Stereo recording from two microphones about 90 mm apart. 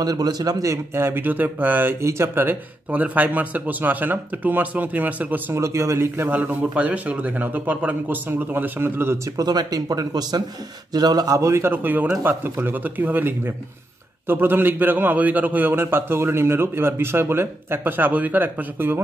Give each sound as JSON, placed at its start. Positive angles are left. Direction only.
{"t": 0.0, "sound": "speech", "side_deg": -45}
{"t": 5.5, "sound": "speech", "side_deg": -30}
{"t": 9.4, "sound": "speech", "side_deg": -45}